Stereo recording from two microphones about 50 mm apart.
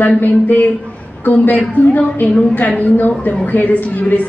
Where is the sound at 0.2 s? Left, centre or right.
Left.